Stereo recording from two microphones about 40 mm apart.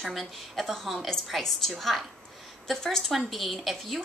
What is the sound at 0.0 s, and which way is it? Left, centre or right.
A woman's voice, centre.